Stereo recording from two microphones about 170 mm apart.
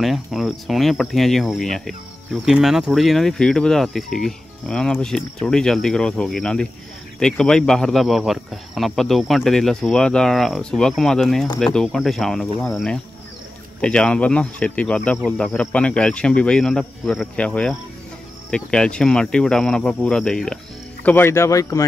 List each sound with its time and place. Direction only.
0.0 s a man's voice: centre (ahead or behind); by 21.8 s 20° left (ahead or behind)